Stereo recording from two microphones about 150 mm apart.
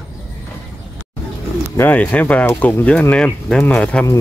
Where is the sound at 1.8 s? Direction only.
10° left (ahead or behind).